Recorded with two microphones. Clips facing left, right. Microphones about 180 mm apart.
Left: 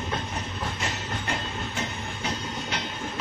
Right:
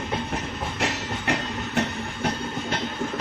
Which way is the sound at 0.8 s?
75° right (ahead or behind).